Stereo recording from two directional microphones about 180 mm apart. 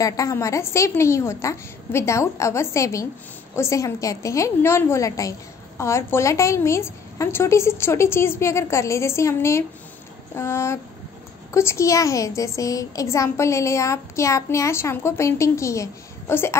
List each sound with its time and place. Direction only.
0.0 s a child's voice: 20° left (ahead or behind)